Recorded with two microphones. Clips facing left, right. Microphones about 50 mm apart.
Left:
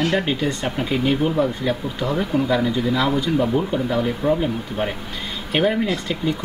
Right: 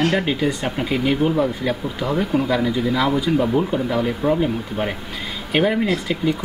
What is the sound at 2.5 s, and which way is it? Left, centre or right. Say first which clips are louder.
Speech: even; centre.